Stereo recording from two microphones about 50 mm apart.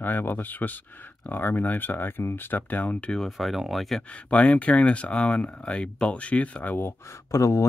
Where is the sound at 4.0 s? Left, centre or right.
Left.